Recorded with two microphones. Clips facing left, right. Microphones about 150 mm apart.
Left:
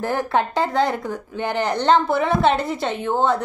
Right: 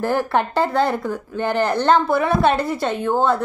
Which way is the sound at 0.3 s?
60° right (ahead or behind).